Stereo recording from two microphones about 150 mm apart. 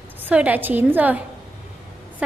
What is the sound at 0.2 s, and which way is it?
A woman's voice, 10° right (ahead or behind).